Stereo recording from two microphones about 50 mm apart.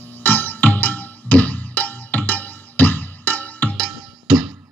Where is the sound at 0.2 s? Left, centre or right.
Left.